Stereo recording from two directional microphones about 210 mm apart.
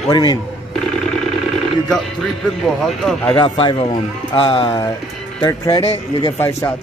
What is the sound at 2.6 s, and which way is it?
Speech, centre (ahead or behind).